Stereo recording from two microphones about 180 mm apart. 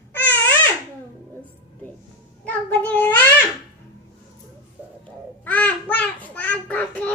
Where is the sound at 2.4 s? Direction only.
10° left (ahead or behind).